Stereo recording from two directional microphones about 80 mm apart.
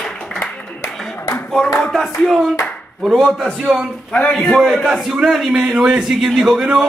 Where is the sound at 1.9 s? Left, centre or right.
Centre.